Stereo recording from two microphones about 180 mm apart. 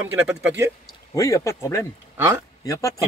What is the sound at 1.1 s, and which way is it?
Speech, 15° left (ahead or behind).